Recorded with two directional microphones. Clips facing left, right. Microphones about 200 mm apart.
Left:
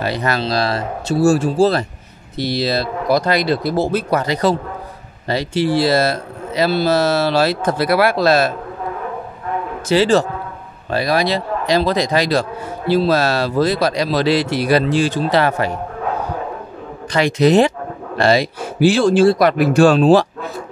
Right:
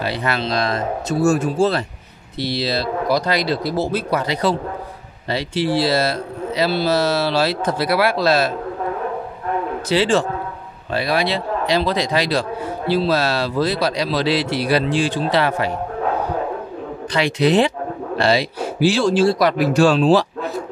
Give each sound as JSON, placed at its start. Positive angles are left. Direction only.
{"t": 0.0, "sound": "a man's voice", "side_deg": 45}
{"t": 9.8, "sound": "a man's voice", "side_deg": 40}
{"t": 17.1, "sound": "a man's voice", "side_deg": 45}